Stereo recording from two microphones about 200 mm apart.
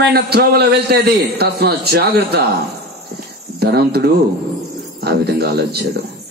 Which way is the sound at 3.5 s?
55° right (ahead or behind).